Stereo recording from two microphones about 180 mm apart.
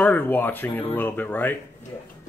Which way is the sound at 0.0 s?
10° left (ahead or behind).